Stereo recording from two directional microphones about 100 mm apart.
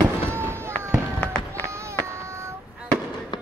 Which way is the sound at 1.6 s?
30° right (ahead or behind).